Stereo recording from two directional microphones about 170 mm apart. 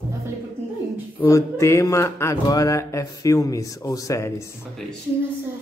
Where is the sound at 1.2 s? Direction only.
15° left (ahead or behind).